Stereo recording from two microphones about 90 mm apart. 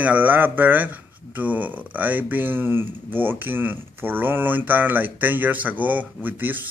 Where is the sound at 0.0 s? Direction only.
15° right (ahead or behind).